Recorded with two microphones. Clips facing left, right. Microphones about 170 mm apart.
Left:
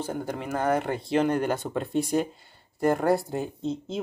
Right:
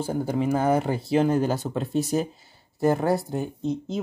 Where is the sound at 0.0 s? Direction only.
10° right (ahead or behind).